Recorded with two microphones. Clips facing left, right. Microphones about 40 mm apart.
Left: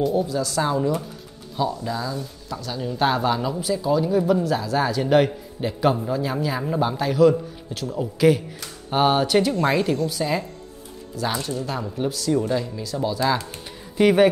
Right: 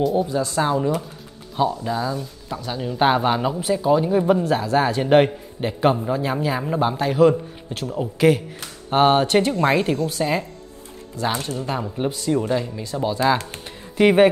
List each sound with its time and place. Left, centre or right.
0.3 s speech: right
9.5 s a woman's voice: centre